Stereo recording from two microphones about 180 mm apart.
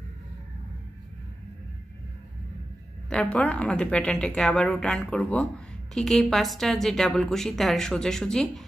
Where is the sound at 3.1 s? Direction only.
5° left (ahead or behind).